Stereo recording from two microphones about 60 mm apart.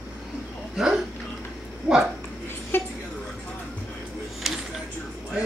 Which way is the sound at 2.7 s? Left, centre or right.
Left.